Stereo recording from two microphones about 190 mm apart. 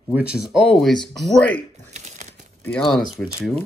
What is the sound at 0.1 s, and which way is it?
Speech, 5° right (ahead or behind).